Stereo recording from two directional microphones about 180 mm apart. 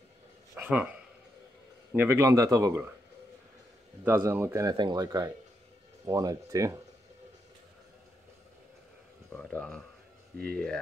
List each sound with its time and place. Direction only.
0.6 s a man's voice: 5° right (ahead or behind)
4.2 s speech: 15° right (ahead or behind)
9.3 s speech: 5° left (ahead or behind)